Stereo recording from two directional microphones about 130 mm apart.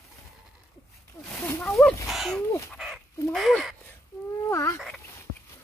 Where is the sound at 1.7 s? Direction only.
Centre (ahead or behind).